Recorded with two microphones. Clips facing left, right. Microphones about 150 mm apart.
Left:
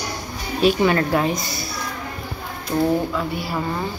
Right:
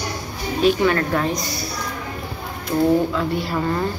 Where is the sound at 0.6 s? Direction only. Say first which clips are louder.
Even; 10° left (ahead or behind).